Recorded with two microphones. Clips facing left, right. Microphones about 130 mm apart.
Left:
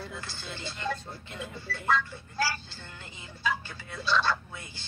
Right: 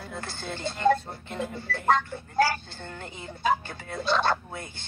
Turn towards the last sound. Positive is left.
turn(degrees=-50)  # may be behind; listen again after turning